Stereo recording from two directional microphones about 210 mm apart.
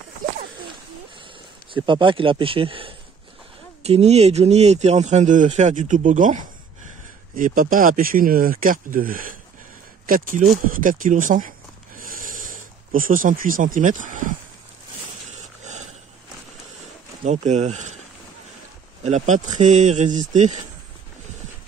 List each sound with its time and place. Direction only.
1.2 s speech: 25° right (ahead or behind); by 10.5 s 40° right (ahead or behind)
10.6 s a sound: 40° right (ahead or behind)
12.9 s speech: 40° right (ahead or behind)
15.2 s a sound: 35° right (ahead or behind)
17.2 s speech: 35° right (ahead or behind)
19.0 s speech: 35° right (ahead or behind)